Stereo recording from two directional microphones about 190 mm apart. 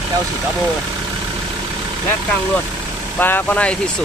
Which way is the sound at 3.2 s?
10° left (ahead or behind).